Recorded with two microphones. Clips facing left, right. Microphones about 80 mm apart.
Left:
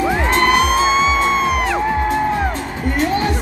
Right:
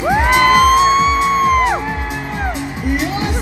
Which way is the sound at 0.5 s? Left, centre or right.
Right.